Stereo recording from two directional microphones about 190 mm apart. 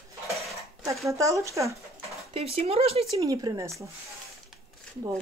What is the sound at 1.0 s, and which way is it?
Speech, 15° right (ahead or behind).